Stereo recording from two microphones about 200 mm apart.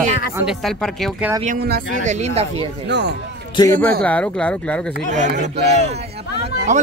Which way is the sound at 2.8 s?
60° right (ahead or behind).